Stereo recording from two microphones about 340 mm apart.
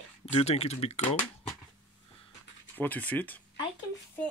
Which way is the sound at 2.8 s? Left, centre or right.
Centre.